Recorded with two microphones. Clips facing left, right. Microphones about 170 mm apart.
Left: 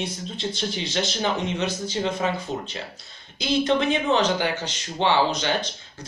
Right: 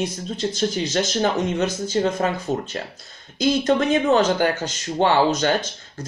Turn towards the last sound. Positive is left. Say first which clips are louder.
# right 3 dB
turn(degrees=-45)  # may be behind; listen again after turning